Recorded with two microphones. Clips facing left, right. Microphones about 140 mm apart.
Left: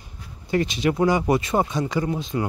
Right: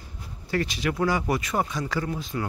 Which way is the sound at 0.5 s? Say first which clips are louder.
Left 5 dB; 20° left (ahead or behind).